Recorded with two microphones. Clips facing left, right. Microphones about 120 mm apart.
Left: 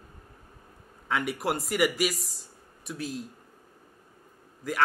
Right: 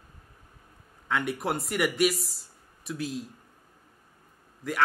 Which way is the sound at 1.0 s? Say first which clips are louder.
Even; centre (ahead or behind).